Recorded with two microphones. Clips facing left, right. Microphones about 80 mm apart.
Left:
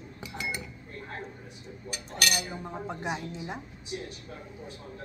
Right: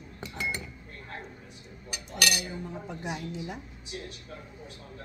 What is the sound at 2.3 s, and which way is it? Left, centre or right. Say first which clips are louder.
A woman's voice: even; left.